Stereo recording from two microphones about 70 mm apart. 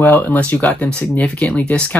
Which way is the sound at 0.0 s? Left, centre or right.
Left.